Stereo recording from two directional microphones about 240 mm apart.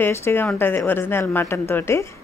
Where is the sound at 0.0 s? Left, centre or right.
Centre.